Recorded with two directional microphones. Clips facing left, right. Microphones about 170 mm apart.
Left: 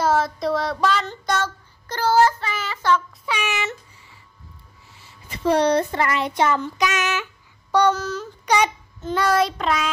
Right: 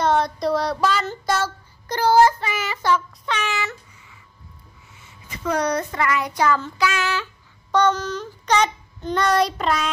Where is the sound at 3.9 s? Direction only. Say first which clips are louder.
Even; 30° left (ahead or behind).